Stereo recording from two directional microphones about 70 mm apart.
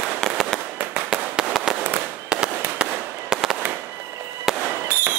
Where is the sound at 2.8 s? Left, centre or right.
Centre.